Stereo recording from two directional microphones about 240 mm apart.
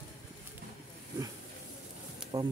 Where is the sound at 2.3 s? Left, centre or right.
Right.